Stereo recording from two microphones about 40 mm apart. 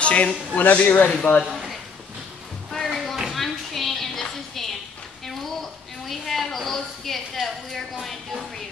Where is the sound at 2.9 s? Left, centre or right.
Centre.